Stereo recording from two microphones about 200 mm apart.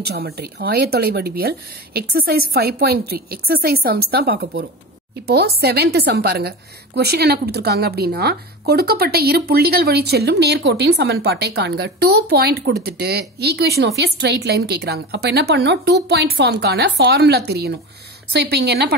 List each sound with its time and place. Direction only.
0.0 s speech: 50° right (ahead or behind)